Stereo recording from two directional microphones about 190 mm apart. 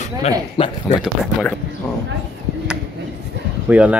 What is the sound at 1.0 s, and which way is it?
Speech, centre (ahead or behind).